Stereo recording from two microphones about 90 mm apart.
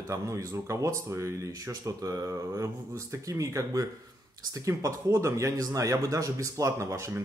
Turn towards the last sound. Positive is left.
turn(degrees=-35)  # may be behind; listen again after turning